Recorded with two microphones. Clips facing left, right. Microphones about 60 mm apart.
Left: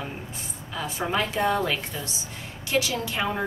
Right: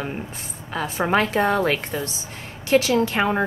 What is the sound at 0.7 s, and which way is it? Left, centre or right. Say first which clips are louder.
A woman's voice: right 6 dB; right.